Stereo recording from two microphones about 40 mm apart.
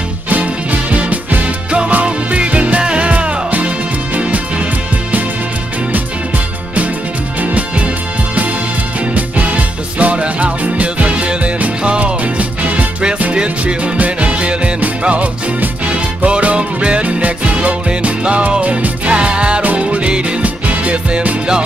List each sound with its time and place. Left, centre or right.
0.3 s music: right
2.8 s music: right
3.1 s music: right
7.5 s music: right
9.9 s music: right
13.3 s music: right
13.9 s music: right
14.3 s music: right
16.3 s music: right